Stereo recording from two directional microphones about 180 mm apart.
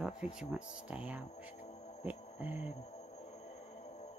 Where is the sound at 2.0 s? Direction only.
10° right (ahead or behind).